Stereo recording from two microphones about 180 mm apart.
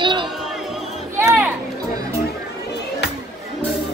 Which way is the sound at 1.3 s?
10° right (ahead or behind).